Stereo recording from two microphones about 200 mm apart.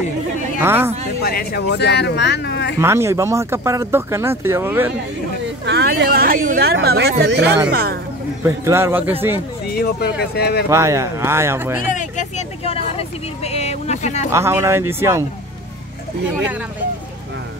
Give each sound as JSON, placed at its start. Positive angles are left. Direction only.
{"t": 0.6, "sound": "speech", "side_deg": -10}
{"t": 1.2, "sound": "speech", "side_deg": 50}
{"t": 2.8, "sound": "speech", "side_deg": -10}
{"t": 5.4, "sound": "speech", "side_deg": -55}
{"t": 8.5, "sound": "speech", "side_deg": -15}
{"t": 9.8, "sound": "speech", "side_deg": 50}
{"t": 10.7, "sound": "speech", "side_deg": -15}
{"t": 11.9, "sound": "vehicle", "side_deg": 40}
{"t": 14.3, "sound": "speech", "side_deg": -15}